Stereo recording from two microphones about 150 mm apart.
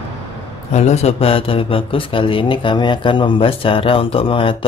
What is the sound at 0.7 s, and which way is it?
Speech, 45° left (ahead or behind).